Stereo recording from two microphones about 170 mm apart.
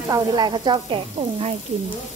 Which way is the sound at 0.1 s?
25° right (ahead or behind).